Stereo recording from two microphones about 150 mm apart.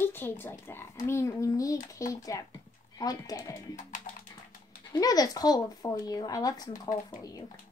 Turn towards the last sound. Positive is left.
turn(degrees=25)  # may be behind; listen again after turning